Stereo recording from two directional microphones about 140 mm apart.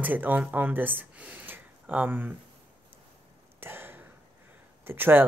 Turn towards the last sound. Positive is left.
turn(degrees=-15)  # may be behind; listen again after turning